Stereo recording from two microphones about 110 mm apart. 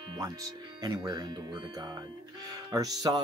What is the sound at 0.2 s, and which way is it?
Speech, 30° right (ahead or behind).